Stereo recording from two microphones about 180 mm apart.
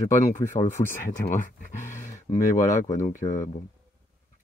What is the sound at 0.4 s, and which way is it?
Speech, 15° left (ahead or behind).